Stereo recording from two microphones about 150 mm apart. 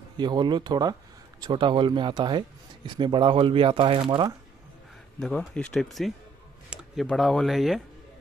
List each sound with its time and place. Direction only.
0.2 s speech: 30° right (ahead or behind)
5.2 s speech: 5° left (ahead or behind)
6.7 s a sound: 5° right (ahead or behind)
7.1 s speech: centre (ahead or behind)